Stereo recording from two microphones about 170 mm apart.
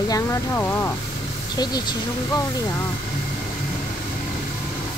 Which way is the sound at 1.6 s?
25° left (ahead or behind).